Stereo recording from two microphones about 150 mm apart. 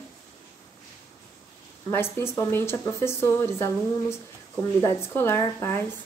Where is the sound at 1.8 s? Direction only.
15° left (ahead or behind).